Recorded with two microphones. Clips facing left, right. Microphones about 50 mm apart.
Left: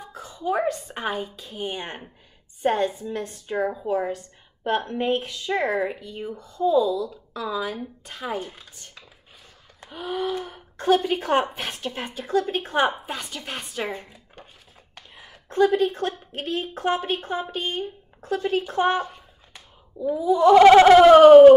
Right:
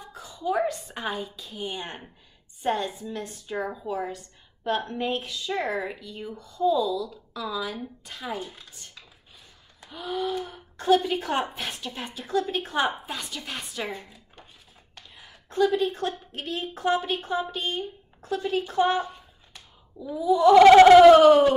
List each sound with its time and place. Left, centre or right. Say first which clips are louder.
0.0 s a woman's voice: left 2 dB; left
9.9 s a woman's voice: left 2 dB; left
15.4 s a woman's voice: left 3 dB; left
19.5 s a sound: left 4 dB; left
20.2 s a woman's voice: left 1 dB; left
20.6 s a sound: even; centre
21.1 s a woman's voice: left 7 dB; left